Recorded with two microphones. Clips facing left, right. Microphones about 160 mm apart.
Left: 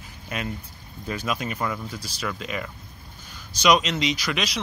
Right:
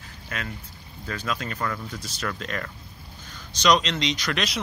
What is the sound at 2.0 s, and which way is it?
Speech, centre (ahead or behind).